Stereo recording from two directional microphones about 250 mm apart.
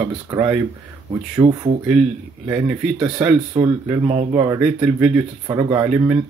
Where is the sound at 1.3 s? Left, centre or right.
Right.